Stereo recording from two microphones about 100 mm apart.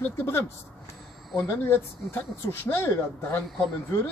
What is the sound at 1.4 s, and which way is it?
Speech, 20° left (ahead or behind).